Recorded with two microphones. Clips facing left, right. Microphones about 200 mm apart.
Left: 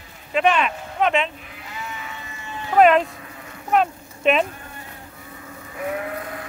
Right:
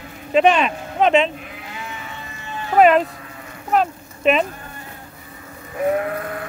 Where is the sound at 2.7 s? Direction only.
5° right (ahead or behind).